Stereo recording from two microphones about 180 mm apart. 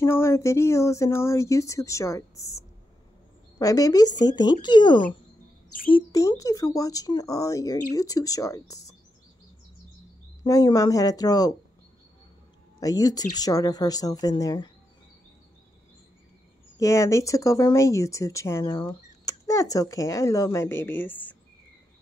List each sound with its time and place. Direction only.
0.0 s speech: 15° left (ahead or behind)
10.4 s speech: 20° left (ahead or behind)
12.8 s speech: 20° left (ahead or behind)
16.7 s speech: 15° left (ahead or behind)